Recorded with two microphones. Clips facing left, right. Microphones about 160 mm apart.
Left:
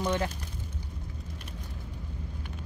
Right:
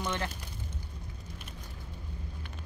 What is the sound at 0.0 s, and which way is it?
Speech, 15° left (ahead or behind).